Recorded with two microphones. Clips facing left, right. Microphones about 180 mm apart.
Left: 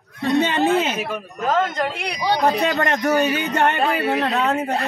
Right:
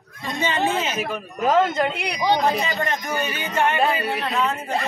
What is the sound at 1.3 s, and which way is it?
Speech, 10° right (ahead or behind).